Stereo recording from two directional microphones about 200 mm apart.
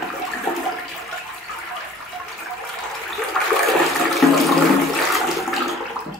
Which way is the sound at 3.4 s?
Centre (ahead or behind).